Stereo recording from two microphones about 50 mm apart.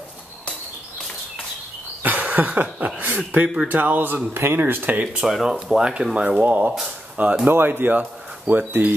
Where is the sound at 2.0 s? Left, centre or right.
Right.